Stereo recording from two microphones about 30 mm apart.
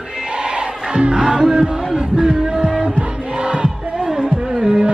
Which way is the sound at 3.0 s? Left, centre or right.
Right.